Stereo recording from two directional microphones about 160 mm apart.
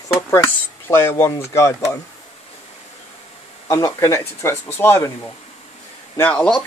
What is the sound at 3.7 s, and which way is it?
Speech, 20° left (ahead or behind).